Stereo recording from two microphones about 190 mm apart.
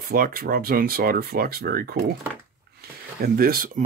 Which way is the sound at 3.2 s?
50° right (ahead or behind).